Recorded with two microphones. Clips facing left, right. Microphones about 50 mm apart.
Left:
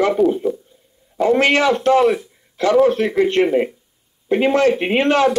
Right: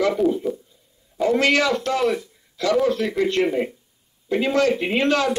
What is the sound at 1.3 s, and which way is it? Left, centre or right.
A man's voice, left.